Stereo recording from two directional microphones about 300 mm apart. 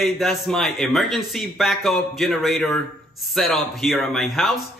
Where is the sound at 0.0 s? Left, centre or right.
Centre.